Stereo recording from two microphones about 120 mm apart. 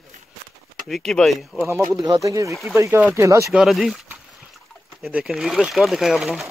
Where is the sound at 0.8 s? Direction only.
Centre (ahead or behind).